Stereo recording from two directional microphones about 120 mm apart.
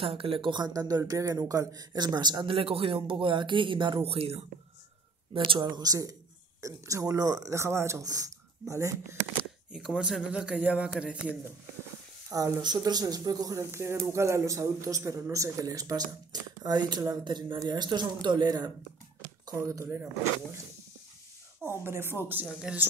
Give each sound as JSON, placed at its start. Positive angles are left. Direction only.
{"t": 0.0, "sound": "speech", "side_deg": -50}
{"t": 5.5, "sound": "speech", "side_deg": -35}
{"t": 9.7, "sound": "speech", "side_deg": -5}
{"t": 12.3, "sound": "speech", "side_deg": -30}
{"t": 19.5, "sound": "speech", "side_deg": -25}
{"t": 21.8, "sound": "speech", "side_deg": -20}
{"t": 22.5, "sound": "speech", "side_deg": -5}